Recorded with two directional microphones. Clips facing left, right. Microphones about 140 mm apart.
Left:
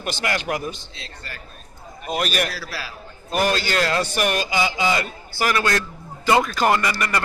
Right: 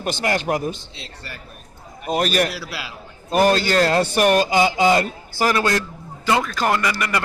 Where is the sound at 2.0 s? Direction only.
40° right (ahead or behind).